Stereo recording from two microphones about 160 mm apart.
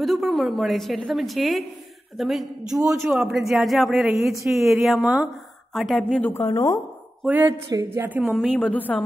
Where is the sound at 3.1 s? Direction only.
5° right (ahead or behind).